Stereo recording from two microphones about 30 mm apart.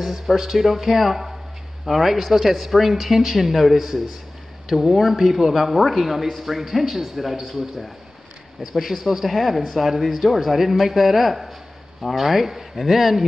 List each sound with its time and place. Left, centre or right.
0.0 s speech: centre
7.5 s speech: centre